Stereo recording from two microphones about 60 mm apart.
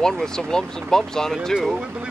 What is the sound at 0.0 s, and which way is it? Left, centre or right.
Speech, centre.